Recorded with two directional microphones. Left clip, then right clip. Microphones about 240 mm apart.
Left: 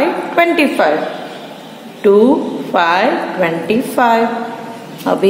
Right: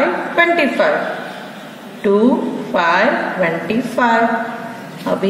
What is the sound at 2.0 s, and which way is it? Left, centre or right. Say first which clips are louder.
A woman's voice: left 5 dB; left.